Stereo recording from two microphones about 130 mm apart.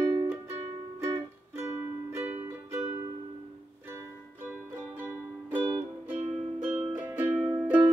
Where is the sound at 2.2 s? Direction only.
10° right (ahead or behind).